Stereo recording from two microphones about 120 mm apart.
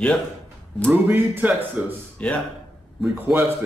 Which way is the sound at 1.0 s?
15° right (ahead or behind).